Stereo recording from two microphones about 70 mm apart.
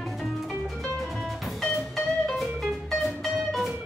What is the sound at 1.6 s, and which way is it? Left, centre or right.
Music, centre.